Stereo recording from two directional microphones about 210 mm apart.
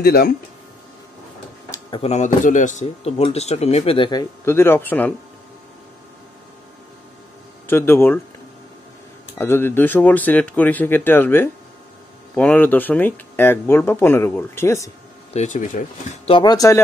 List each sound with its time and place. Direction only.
0.0 s speech: 50° left (ahead or behind)
1.7 s speech: 25° left (ahead or behind); by 5.1 s 10° left (ahead or behind)
7.6 s speech: 10° left (ahead or behind)
9.4 s speech: 10° left (ahead or behind)
15.3 s speech: 35° left (ahead or behind)
16.3 s speech: 20° left (ahead or behind)